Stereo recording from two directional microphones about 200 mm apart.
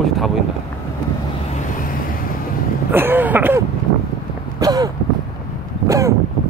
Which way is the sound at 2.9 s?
10° right (ahead or behind).